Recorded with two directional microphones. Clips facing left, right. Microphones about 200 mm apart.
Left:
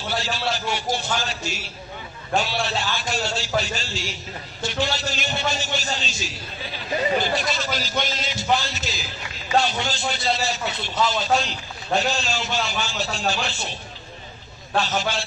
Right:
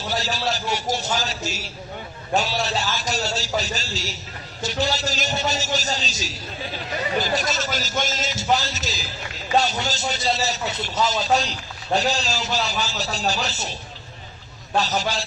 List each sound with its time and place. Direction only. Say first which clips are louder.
0.1 s a man's voice: right 1 dB; 40° right (ahead or behind)
14.8 s a man's voice: right 1 dB; 40° right (ahead or behind)